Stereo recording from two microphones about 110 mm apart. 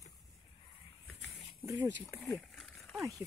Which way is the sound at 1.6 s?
25° right (ahead or behind).